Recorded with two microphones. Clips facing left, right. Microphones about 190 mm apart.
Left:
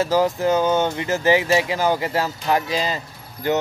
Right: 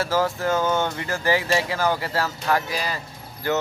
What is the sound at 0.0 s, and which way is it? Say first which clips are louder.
Speech: left 4 dB; 15° left (ahead or behind).